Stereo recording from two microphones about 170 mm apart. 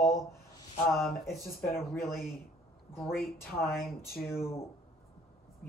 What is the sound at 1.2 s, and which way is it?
Speech, centre (ahead or behind).